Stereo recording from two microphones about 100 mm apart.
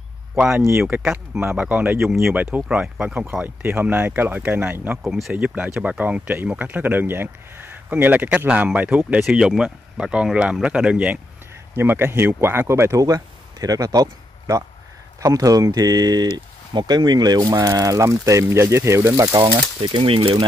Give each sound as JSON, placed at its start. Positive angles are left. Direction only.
{"t": 0.4, "sound": "speech", "side_deg": -10}
{"t": 2.0, "sound": "speech", "side_deg": -5}
{"t": 2.3, "sound": "speech", "side_deg": -15}
{"t": 5.0, "sound": "speech", "side_deg": -5}
{"t": 9.2, "sound": "speech", "side_deg": -5}
{"t": 11.7, "sound": "speech", "side_deg": -20}
{"t": 13.0, "sound": "speech", "side_deg": -35}
{"t": 19.4, "sound": "speech", "side_deg": -60}